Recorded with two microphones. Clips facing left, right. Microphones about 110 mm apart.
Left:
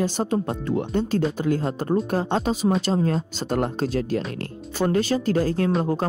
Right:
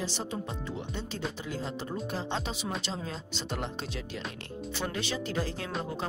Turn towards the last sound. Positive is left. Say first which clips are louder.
# left 12 dB
turn(degrees=45)  # may be behind; listen again after turning